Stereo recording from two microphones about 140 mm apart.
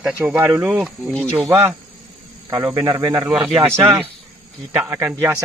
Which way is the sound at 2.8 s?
30° right (ahead or behind).